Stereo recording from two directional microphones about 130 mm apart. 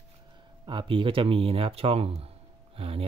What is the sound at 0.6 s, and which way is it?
Speech, 40° right (ahead or behind).